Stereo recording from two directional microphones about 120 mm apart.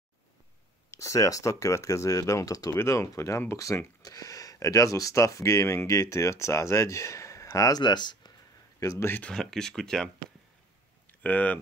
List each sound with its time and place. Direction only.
0.9 s speech: 25° left (ahead or behind)
8.7 s speech: 25° left (ahead or behind)
9.1 s speech: 10° left (ahead or behind)
11.1 s a sound: 15° left (ahead or behind)